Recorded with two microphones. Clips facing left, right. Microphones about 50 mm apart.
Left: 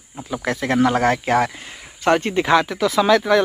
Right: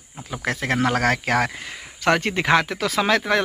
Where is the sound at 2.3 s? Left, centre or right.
Right.